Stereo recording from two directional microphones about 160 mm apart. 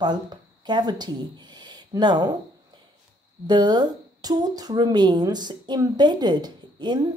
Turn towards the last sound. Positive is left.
turn(degrees=-25)  # may be behind; listen again after turning